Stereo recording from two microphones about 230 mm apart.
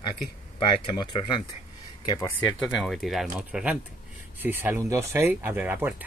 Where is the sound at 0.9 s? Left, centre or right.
Left.